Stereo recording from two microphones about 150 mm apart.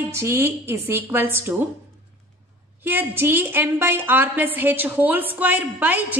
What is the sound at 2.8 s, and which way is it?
A woman's voice, 15° right (ahead or behind).